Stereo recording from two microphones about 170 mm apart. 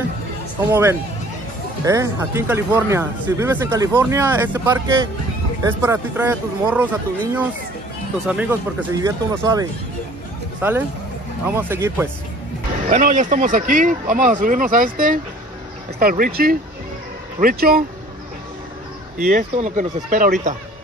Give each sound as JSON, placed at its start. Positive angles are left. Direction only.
{"t": 0.7, "sound": "speech", "side_deg": -15}
{"t": 12.9, "sound": "speech", "side_deg": -45}
{"t": 19.1, "sound": "speech", "side_deg": -55}
{"t": 19.5, "sound": "speech", "side_deg": -45}